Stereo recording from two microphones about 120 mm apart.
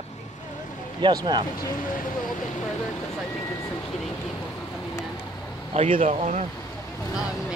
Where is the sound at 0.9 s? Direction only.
40° right (ahead or behind).